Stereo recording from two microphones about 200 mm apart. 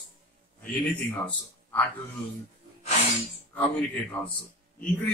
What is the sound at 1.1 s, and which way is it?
Speech, 5° left (ahead or behind).